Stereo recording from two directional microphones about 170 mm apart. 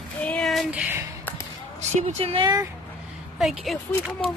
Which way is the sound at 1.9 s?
40° right (ahead or behind).